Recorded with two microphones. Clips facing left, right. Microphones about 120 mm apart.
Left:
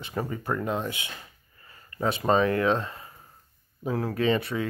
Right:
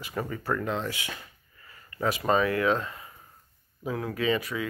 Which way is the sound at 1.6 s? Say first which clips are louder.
Left 1 dB; 30° left (ahead or behind).